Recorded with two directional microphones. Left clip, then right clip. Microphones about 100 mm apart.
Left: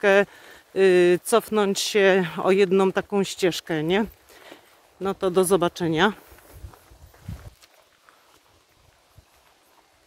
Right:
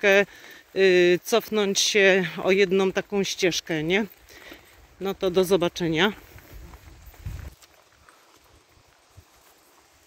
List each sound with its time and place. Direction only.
0.0 s speech: 15° left (ahead or behind)